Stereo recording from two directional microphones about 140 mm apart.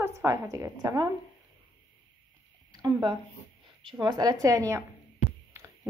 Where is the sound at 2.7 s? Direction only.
30° right (ahead or behind).